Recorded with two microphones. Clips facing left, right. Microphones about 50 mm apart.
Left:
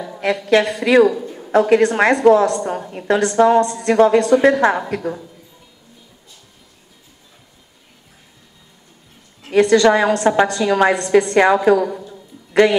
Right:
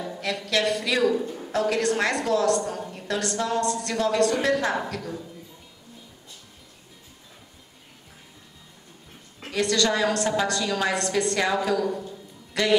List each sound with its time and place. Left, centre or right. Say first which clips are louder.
0.2 s a woman's voice: left 10 dB; left
9.5 s a woman's voice: left 11 dB; left